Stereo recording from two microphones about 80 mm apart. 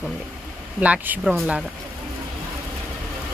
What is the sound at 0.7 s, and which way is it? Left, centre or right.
Speech, centre.